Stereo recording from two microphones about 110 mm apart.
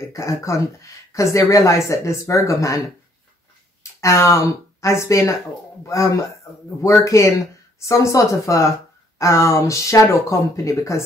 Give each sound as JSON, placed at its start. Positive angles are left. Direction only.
{"t": 0.1, "sound": "speech", "side_deg": 30}
{"t": 4.0, "sound": "speech", "side_deg": 30}